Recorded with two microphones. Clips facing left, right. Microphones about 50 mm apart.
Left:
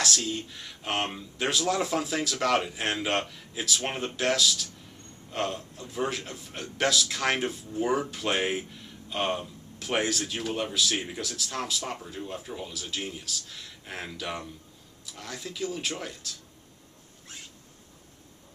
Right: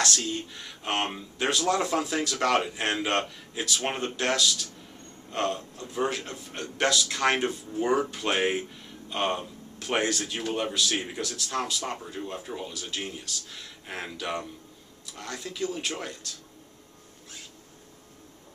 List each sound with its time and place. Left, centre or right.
0.0 s speech: centre